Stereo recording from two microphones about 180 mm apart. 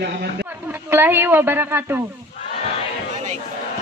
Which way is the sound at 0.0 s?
65° right (ahead or behind).